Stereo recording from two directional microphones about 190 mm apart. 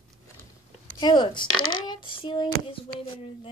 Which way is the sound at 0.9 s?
25° left (ahead or behind).